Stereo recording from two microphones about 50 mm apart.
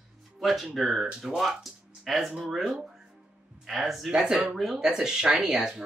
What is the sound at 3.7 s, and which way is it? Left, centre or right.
Speech, centre.